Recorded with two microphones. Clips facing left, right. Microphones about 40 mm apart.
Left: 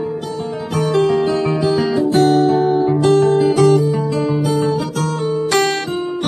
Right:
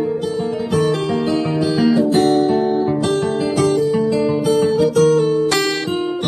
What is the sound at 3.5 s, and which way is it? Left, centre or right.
Music, centre.